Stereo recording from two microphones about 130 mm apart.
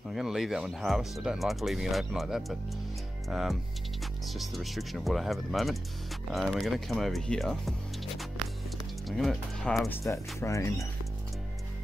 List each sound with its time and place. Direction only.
0.1 s speech: centre (ahead or behind)
9.0 s speech: centre (ahead or behind)
9.8 s speech: 20° left (ahead or behind)